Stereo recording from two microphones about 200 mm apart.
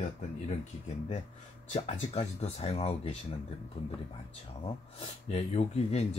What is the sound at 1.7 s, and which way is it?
Speech, 35° left (ahead or behind).